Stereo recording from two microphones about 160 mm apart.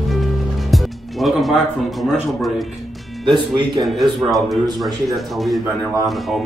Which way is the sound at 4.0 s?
Centre (ahead or behind).